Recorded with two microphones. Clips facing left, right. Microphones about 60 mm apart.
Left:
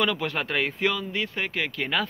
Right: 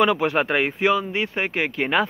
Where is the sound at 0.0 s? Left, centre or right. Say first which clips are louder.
Right 7 dB; right.